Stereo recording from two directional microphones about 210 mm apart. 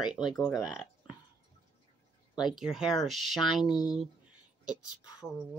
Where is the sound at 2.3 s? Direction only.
Centre (ahead or behind).